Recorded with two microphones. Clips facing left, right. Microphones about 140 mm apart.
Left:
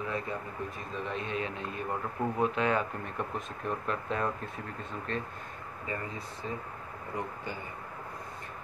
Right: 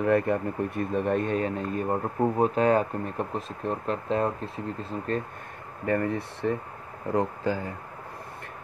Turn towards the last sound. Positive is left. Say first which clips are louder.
# right 10 dB
turn(degrees=-90)